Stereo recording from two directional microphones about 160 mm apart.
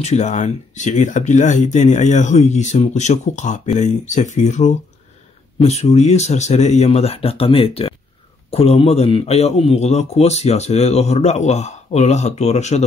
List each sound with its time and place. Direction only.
0.0 s speech: 45° left (ahead or behind)